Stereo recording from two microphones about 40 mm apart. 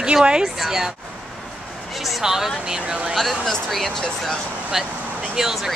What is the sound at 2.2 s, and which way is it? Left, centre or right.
Speech, centre.